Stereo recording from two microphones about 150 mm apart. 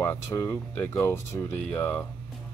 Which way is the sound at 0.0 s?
15° left (ahead or behind).